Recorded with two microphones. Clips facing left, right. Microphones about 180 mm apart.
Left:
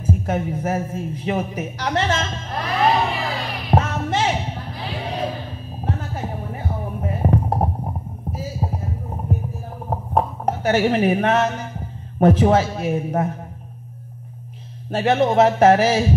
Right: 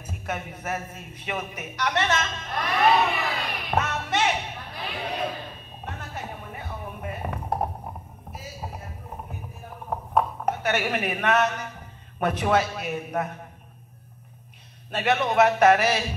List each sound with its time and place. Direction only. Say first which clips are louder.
0.0 s a sound: left 10 dB; 30° left (ahead or behind)
5.8 s music: left 9 dB; 30° left (ahead or behind)
8.3 s heart sounds: left 10 dB; 30° left (ahead or behind)
9.8 s speech: left 3 dB; 30° left (ahead or behind)
14.9 s a man's voice: left 6 dB; 30° left (ahead or behind)